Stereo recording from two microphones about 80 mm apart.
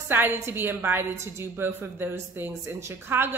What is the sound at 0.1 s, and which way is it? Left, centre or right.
A woman's voice, right.